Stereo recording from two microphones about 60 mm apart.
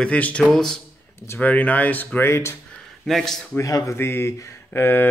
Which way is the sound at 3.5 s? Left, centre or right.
Left.